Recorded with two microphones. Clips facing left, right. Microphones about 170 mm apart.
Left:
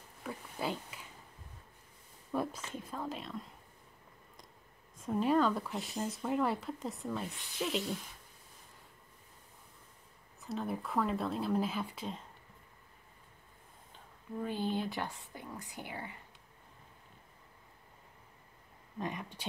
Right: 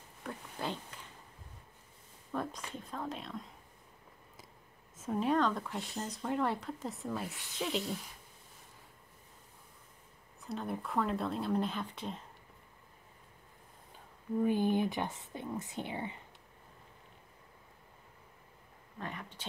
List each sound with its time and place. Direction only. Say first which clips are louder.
0.2 s a sound: left 1 dB; 5° left (ahead or behind)
2.3 s a sound: left 2 dB; 5° left (ahead or behind)
2.7 s a woman's voice: even; 5° left (ahead or behind)
4.9 s speech: left 1 dB; centre (ahead or behind)
10.4 s speech: left 1 dB; centre (ahead or behind)
14.4 s speech: right 5 dB; 15° right (ahead or behind)
18.9 s speech: left 4 dB; 15° left (ahead or behind)